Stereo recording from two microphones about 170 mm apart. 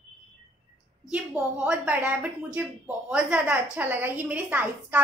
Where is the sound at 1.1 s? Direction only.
10° right (ahead or behind).